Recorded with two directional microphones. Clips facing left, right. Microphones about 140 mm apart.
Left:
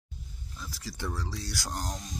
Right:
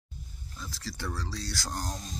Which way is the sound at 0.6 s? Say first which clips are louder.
Even; 15° left (ahead or behind).